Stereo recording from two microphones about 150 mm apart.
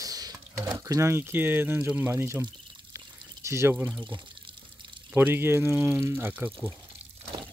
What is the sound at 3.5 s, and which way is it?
Speech, 15° right (ahead or behind).